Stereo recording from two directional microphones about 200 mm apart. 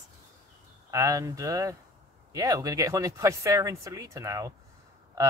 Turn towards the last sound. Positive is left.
turn(degrees=-15)  # may be behind; listen again after turning